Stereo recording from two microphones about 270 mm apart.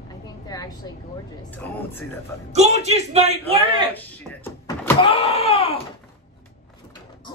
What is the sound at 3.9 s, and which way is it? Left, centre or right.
Speech, centre.